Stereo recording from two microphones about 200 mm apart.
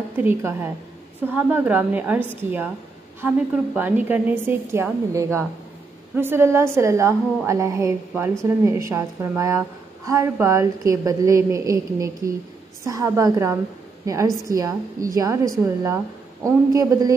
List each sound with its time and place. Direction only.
0.2 s a woman's voice: 10° right (ahead or behind)